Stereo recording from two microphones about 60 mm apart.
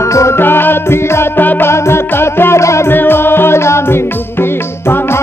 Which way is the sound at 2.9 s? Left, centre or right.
Left.